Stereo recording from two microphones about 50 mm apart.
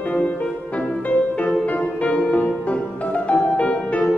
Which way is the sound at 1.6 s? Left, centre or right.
Left.